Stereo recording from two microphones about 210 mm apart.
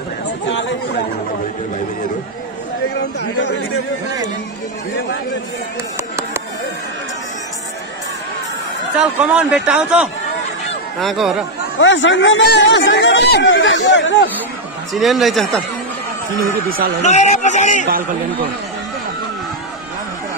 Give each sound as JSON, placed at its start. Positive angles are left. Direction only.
{"t": 0.5, "sound": "chatter", "side_deg": 60}
{"t": 3.0, "sound": "speech", "side_deg": 60}
{"t": 8.9, "sound": "speech", "side_deg": -5}
{"t": 11.8, "sound": "speech", "side_deg": 65}
{"t": 15.0, "sound": "speech", "side_deg": 0}
{"t": 16.4, "sound": "speech", "side_deg": -45}
{"t": 17.0, "sound": "speech", "side_deg": 35}